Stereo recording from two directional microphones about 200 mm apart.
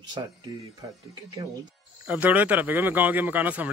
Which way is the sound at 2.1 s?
10° right (ahead or behind).